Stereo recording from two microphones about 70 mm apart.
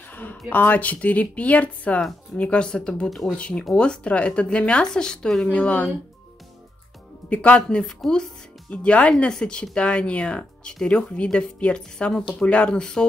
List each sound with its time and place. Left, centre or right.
0.1 s a woman's voice: left
7.2 s speech: centre